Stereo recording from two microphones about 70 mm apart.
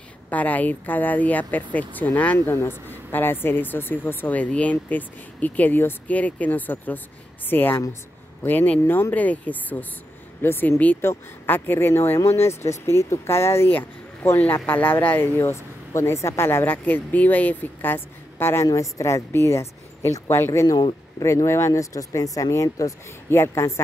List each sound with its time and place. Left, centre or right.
0.3 s speech: left
18.7 s speech: left
20.6 s speech: left
21.5 s speech: left
23.4 s speech: left